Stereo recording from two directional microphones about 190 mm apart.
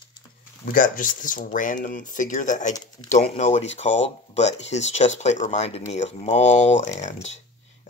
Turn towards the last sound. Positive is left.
turn(degrees=35)  # may be behind; listen again after turning